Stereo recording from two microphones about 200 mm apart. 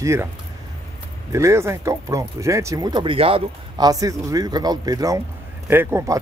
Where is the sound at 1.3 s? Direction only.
15° right (ahead or behind).